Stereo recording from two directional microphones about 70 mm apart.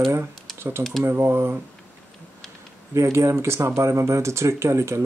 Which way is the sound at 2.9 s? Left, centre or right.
Right.